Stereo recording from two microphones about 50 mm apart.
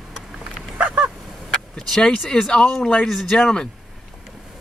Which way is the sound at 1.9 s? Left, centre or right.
Centre.